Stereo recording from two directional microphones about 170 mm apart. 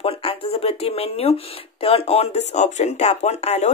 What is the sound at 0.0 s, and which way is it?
Speech, 35° left (ahead or behind).